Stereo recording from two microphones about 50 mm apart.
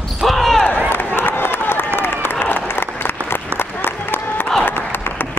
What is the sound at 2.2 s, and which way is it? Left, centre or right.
Applause, left.